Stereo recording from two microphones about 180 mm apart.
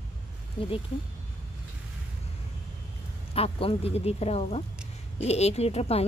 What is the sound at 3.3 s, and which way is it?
Speech, 35° left (ahead or behind).